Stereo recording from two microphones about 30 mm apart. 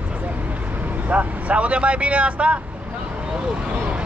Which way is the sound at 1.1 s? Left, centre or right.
Right.